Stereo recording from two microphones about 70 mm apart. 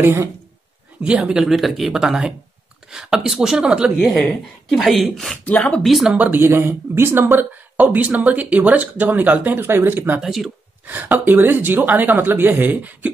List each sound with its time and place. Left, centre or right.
0.0 s a woman's voice: right
1.0 s speech: centre
1.4 s speech: centre
4.2 s speech: centre
6.1 s speech: right
6.4 s speech: right
10.2 s speech: centre
11.1 s speech: right